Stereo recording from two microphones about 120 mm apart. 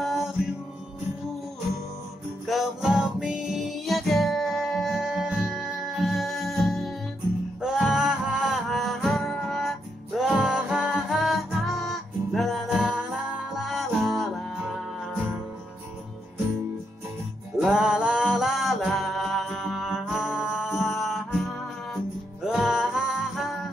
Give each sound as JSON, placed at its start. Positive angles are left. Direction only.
{"t": 0.0, "sound": "music", "side_deg": 0}
{"t": 2.4, "sound": "music", "side_deg": 0}
{"t": 17.6, "sound": "music", "side_deg": -5}
{"t": 22.4, "sound": "music", "side_deg": -5}